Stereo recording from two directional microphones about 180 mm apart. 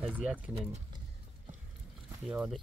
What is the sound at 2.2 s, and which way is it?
Speech, 5° right (ahead or behind).